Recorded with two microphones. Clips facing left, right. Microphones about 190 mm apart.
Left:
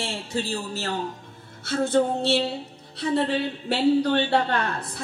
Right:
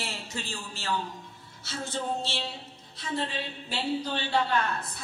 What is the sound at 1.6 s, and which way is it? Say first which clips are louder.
Speech: left 12 dB; 60° left (ahead or behind).